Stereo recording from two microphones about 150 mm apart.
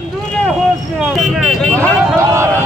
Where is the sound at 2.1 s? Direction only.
15° right (ahead or behind).